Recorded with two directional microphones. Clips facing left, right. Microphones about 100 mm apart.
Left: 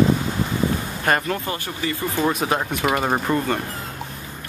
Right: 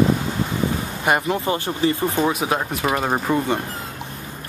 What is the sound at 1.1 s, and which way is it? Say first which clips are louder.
Speech: right 2 dB; 20° right (ahead or behind).